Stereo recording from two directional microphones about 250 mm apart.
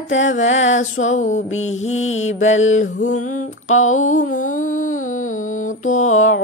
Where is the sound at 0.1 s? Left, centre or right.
Left.